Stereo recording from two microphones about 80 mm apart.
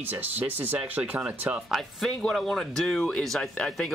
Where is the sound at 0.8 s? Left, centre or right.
Centre.